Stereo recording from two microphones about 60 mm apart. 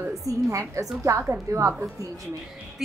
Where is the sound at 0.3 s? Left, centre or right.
Right.